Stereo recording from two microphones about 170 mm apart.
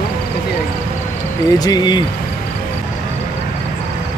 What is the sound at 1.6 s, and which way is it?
Speech, 25° left (ahead or behind).